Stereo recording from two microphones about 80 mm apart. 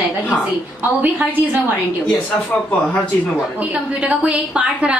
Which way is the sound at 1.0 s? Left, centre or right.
Right.